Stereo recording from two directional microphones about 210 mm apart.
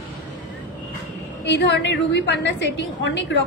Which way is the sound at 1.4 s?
55° left (ahead or behind).